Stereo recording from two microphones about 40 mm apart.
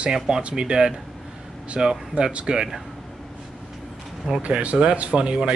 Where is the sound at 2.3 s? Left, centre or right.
Right.